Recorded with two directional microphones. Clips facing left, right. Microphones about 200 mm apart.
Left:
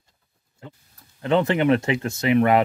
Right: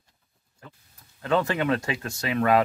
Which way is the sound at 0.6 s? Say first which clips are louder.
Left 6 dB; 25° left (ahead or behind).